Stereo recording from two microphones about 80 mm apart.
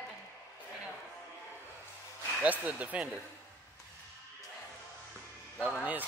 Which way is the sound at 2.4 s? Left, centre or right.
Centre.